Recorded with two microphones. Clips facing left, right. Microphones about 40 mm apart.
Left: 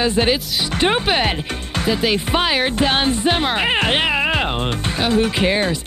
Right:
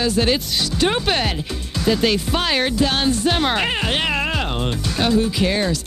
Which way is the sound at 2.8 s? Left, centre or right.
Left.